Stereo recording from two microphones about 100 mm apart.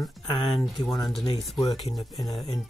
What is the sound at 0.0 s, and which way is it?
Speech, 55° left (ahead or behind).